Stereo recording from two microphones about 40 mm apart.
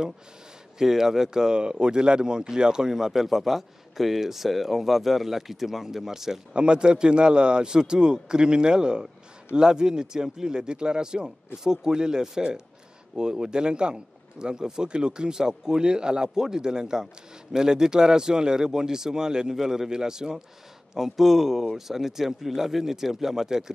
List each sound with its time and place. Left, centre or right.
0.7 s speech: centre
6.5 s speech: right